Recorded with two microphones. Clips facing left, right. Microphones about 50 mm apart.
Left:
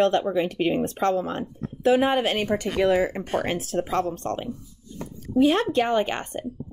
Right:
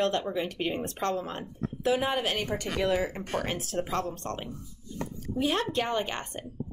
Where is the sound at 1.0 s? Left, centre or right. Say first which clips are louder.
Left 6 dB; left.